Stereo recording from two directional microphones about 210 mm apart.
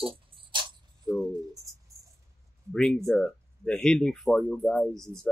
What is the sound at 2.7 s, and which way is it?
Speech, centre (ahead or behind).